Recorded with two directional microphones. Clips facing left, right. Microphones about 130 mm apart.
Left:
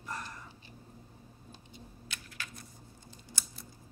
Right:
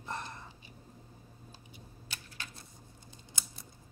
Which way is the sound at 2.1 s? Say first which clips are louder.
Left 1 dB; 30° right (ahead or behind).